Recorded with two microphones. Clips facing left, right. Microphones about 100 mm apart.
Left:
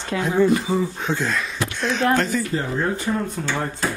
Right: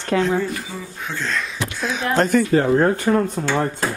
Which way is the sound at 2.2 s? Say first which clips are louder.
Right 8 dB; 60° right (ahead or behind).